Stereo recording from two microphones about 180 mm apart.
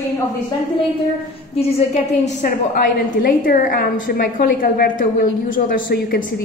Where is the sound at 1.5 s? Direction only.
35° left (ahead or behind).